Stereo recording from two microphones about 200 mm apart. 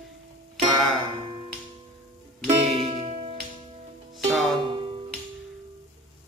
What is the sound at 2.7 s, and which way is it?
Music, 25° right (ahead or behind).